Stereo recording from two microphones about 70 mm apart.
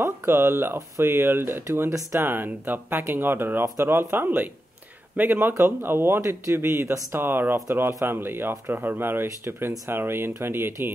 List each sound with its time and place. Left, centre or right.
0.0 s speech: right